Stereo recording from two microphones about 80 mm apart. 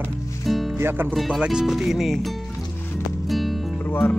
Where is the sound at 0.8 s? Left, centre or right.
Right.